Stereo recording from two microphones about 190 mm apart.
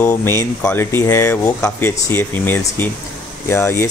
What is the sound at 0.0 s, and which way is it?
Speech, 15° left (ahead or behind).